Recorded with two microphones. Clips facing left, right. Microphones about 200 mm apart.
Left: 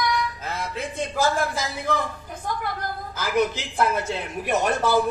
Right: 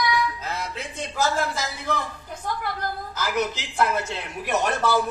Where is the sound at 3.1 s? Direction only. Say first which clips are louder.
Left 4 dB; 50° left (ahead or behind).